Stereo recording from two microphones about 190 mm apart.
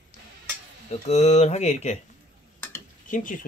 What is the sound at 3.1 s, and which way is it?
Speech, 45° left (ahead or behind).